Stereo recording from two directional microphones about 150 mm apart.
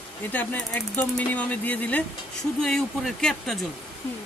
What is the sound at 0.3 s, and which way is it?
Speech, 10° left (ahead or behind).